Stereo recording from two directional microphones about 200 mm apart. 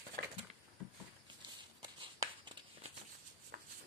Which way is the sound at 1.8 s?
20° right (ahead or behind).